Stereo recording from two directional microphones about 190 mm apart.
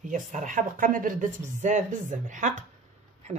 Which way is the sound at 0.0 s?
40° right (ahead or behind).